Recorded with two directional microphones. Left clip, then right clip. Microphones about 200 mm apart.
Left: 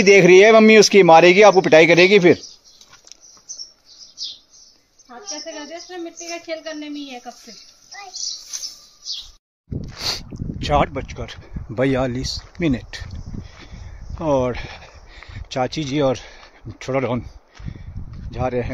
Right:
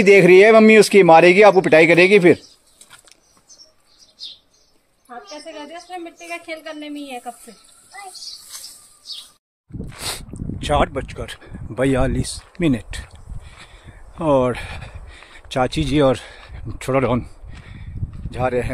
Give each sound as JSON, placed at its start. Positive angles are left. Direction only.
{"t": 0.0, "sound": "speech", "side_deg": 0}
{"t": 5.4, "sound": "speech", "side_deg": -30}
{"t": 9.9, "sound": "speech", "side_deg": 0}
{"t": 11.7, "sound": "speech", "side_deg": -5}
{"t": 12.5, "sound": "a sound", "side_deg": -10}